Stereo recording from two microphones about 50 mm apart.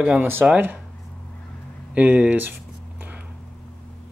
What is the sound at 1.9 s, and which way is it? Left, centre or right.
Speech, right.